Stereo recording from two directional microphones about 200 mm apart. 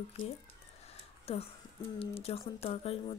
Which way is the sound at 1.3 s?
30° left (ahead or behind).